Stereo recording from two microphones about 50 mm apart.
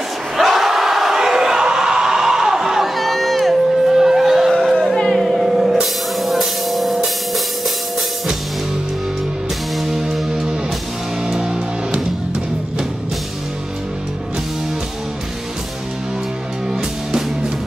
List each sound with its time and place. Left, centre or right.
0.4 s crowd: centre
4.5 s music: centre
5.2 s music: centre
9.8 s music: centre